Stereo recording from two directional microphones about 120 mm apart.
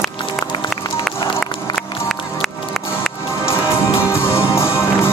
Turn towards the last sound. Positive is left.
turn(degrees=20)  # may be behind; listen again after turning